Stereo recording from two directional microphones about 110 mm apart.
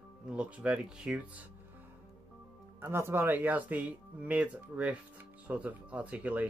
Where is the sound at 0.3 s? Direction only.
10° right (ahead or behind).